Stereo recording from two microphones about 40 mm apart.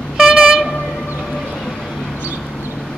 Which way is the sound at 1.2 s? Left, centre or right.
Centre.